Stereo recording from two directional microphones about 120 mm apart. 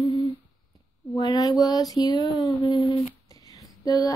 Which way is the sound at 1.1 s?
30° left (ahead or behind).